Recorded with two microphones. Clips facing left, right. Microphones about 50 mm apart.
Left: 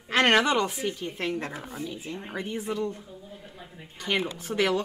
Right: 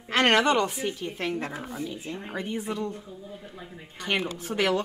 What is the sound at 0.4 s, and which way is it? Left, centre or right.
Speech, centre.